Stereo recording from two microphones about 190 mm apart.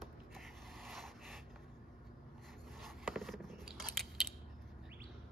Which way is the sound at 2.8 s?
Centre (ahead or behind).